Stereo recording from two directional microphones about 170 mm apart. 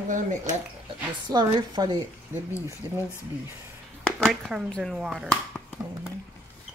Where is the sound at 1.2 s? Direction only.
25° right (ahead or behind).